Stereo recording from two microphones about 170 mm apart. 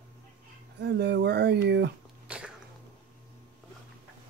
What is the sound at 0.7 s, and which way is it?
Speech, 80° right.